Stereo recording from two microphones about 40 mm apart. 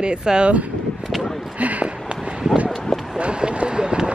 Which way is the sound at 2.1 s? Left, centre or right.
Right.